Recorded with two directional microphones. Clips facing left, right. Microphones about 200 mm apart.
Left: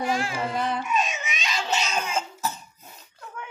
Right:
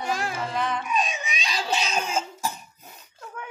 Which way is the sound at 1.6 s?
35° right (ahead or behind).